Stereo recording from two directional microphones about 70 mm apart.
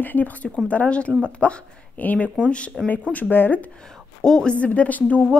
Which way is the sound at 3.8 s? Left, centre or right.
Centre.